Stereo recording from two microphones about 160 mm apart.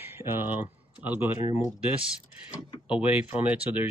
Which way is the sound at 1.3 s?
50° left (ahead or behind).